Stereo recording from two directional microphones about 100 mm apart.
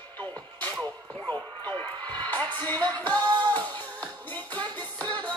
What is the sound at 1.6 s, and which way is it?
Music, 20° left (ahead or behind).